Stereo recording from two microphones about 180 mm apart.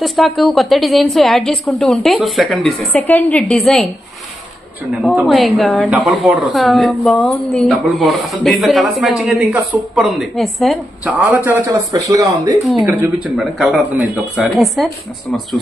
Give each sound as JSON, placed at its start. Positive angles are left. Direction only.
{"t": 0.0, "sound": "a woman's voice", "side_deg": 0}
{"t": 5.0, "sound": "a woman's voice", "side_deg": 0}